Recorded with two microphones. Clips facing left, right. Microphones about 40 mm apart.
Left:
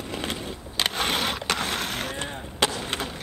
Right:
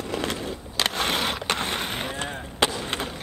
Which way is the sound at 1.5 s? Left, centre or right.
Centre.